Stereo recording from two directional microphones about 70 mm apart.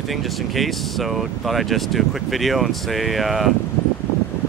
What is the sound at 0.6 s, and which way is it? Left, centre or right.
Speech, centre.